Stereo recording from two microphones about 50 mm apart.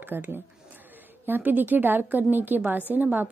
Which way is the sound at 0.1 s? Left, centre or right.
Right.